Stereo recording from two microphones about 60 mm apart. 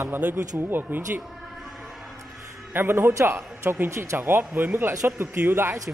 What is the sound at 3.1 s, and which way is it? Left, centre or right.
Speech, right.